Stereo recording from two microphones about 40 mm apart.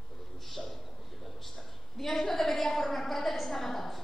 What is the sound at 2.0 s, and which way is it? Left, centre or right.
A woman's voice, centre.